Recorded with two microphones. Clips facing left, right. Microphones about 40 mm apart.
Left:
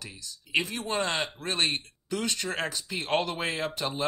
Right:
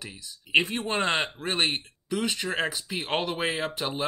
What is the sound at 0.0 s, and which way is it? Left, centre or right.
Speech, right.